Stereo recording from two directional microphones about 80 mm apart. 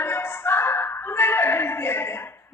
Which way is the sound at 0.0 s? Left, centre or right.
Left.